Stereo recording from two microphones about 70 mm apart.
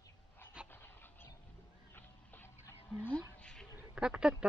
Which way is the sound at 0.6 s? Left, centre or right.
Centre.